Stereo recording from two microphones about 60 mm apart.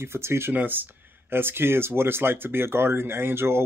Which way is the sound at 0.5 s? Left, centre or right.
Right.